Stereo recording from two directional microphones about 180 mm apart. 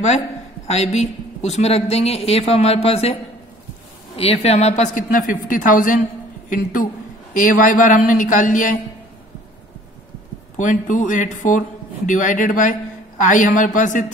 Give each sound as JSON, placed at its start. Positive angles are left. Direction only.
{"t": 0.7, "sound": "speech", "side_deg": 35}
{"t": 4.2, "sound": "speech", "side_deg": 35}
{"t": 10.6, "sound": "speech", "side_deg": 45}